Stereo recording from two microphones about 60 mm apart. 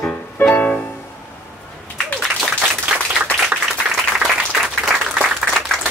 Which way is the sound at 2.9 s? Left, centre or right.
Right.